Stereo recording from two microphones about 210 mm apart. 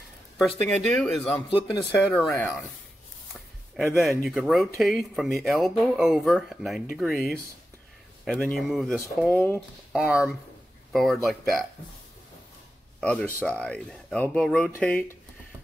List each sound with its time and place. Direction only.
0.7 s speech: centre (ahead or behind)
1.5 s speech: 25° left (ahead or behind)
1.9 s speech: 10° left (ahead or behind)
3.3 s a sound: centre (ahead or behind)
4.3 s speech: centre (ahead or behind)
9.9 s speech: 5° right (ahead or behind)
13.0 s speech: 5° left (ahead or behind)